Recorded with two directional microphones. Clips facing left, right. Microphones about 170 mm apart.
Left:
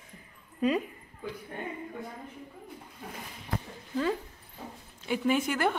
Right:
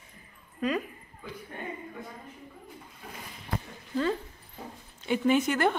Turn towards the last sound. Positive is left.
turn(degrees=5)  # may be behind; listen again after turning